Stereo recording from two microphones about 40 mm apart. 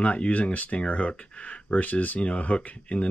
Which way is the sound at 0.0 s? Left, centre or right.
Left.